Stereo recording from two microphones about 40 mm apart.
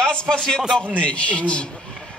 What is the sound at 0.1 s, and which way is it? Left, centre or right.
Speech, centre.